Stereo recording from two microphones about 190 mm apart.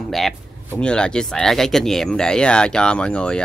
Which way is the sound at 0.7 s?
5° left (ahead or behind).